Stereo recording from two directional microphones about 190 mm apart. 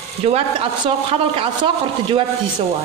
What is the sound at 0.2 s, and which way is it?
Speech, 30° right (ahead or behind).